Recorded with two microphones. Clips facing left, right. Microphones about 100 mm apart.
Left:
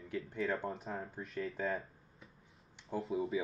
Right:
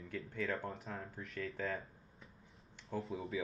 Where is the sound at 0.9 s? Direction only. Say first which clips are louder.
Left 4 dB; 20° left (ahead or behind).